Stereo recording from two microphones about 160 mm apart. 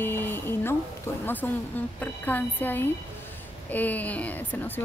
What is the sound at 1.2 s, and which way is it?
Speech, 10° left (ahead or behind).